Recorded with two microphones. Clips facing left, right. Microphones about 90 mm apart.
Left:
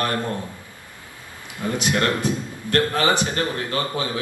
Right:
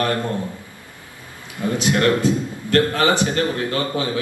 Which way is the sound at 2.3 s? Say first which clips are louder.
Right 5 dB; 20° right (ahead or behind).